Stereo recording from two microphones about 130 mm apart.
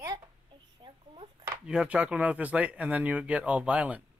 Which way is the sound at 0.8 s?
35° right (ahead or behind).